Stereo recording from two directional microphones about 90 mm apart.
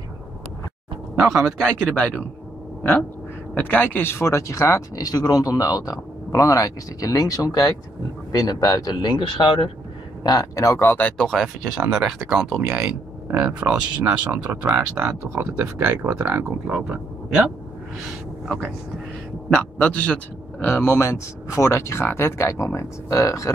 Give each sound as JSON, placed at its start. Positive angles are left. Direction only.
{"t": 1.6, "sound": "speech", "side_deg": 5}
{"t": 10.2, "sound": "speech", "side_deg": 40}
{"t": 16.4, "sound": "speech", "side_deg": -10}
{"t": 19.5, "sound": "speech", "side_deg": 10}
{"t": 20.6, "sound": "speech", "side_deg": 30}